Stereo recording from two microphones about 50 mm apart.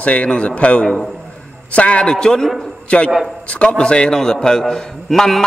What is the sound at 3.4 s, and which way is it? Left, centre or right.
A man's voice, left.